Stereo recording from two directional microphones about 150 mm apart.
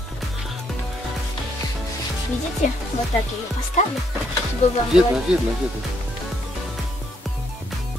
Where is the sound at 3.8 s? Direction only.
50° left (ahead or behind).